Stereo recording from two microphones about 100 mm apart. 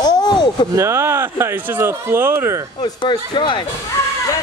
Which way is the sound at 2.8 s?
55° left (ahead or behind).